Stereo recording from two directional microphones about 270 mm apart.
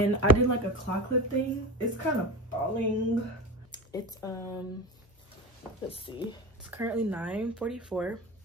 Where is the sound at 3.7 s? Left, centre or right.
Centre.